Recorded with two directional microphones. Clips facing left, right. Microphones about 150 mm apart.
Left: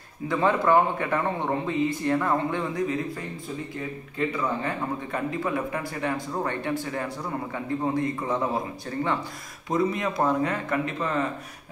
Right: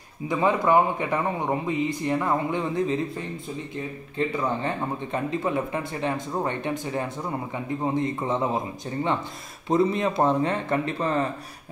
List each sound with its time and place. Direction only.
0.3 s a man's voice: 15° right (ahead or behind); by 11.2 s 35° right (ahead or behind)